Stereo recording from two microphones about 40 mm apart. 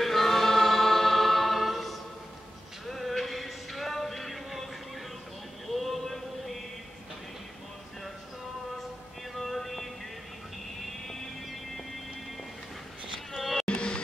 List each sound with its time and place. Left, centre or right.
0.0 s choir: centre
2.9 s music: centre
5.7 s mantra: centre
9.3 s music: centre
10.8 s vehicle: centre
13.3 s music: centre
13.7 s music: left